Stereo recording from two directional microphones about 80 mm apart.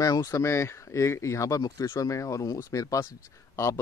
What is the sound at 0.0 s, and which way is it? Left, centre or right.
A man's voice, left.